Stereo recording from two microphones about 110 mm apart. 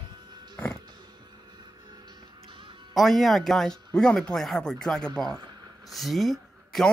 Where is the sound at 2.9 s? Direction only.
Centre (ahead or behind).